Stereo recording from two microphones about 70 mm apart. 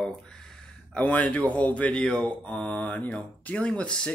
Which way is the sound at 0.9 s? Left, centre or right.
Centre.